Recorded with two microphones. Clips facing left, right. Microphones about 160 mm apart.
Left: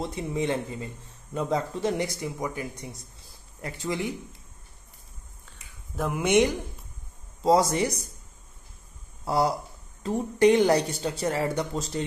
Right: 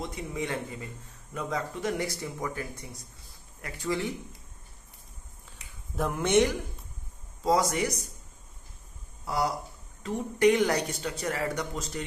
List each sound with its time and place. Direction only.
0.0 s speech: 30° left (ahead or behind)
5.9 s speech: centre (ahead or behind)
6.2 s a woman's voice: 15° left (ahead or behind)
7.4 s speech: 30° left (ahead or behind)
9.2 s speech: 30° left (ahead or behind)